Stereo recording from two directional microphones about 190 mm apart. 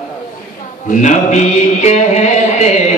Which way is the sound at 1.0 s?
40° left (ahead or behind).